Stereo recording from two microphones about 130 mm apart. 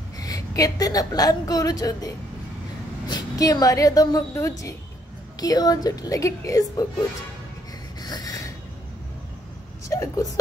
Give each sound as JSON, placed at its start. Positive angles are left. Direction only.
{"t": 0.2, "sound": "a woman's voice", "side_deg": 30}
{"t": 8.0, "sound": "a sound", "side_deg": 30}
{"t": 9.8, "sound": "speech", "side_deg": 25}